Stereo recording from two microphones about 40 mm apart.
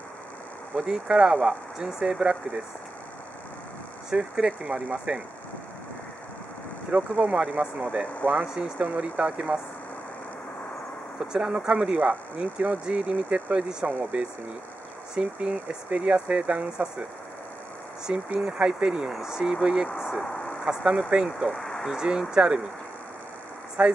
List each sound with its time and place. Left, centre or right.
0.7 s speech: centre
4.1 s speech: centre
6.9 s speech: right
7.4 s speech: right
8.2 s speech: left
8.7 s speech: right
11.1 s speech: centre
11.6 s speech: right
13.8 s speech: right
18.1 s speech: right
18.4 s speech: centre
21.5 s a sound: centre
21.8 s speech: centre
23.8 s speech: right